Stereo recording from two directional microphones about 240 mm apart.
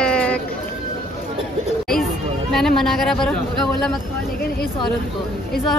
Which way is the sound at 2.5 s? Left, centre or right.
Centre.